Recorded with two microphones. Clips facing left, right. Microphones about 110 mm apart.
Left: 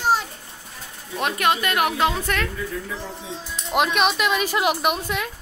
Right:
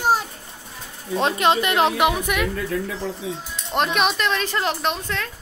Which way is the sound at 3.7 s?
5° left (ahead or behind).